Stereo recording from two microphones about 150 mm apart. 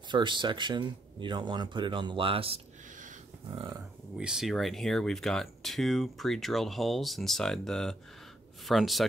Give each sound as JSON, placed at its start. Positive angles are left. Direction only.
{"t": 0.1, "sound": "speech", "side_deg": -30}
{"t": 4.2, "sound": "speech", "side_deg": -5}